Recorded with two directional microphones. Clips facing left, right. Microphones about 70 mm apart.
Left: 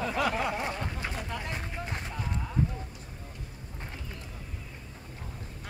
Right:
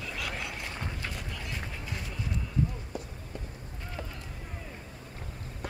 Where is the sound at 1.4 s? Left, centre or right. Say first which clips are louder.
Left 3 dB; left.